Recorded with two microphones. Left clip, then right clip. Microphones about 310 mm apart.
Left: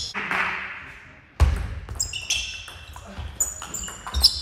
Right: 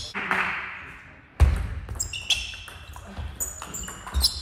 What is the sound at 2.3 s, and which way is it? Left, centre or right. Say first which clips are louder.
Basketball bounce: right 2 dB; centre.